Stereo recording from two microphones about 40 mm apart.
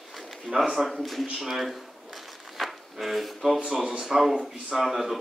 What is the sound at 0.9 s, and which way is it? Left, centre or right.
Speech, centre.